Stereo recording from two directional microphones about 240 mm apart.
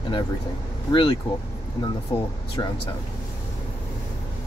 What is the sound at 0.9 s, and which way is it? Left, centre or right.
Speech, centre.